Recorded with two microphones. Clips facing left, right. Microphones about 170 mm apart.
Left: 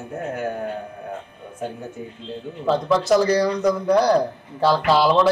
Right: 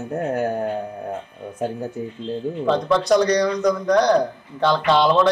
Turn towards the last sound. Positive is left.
turn(degrees=5)  # may be behind; listen again after turning